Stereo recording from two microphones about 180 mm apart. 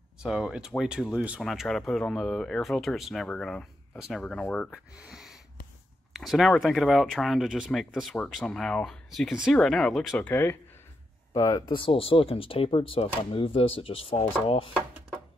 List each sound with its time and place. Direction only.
0.2 s speech: 5° right (ahead or behind)
5.0 s wheeze: centre (ahead or behind)
6.1 s speech: centre (ahead or behind); by 14.2 s 30° left (ahead or behind)